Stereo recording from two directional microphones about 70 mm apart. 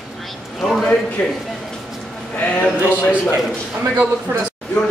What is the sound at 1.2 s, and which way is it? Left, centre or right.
Speech, centre.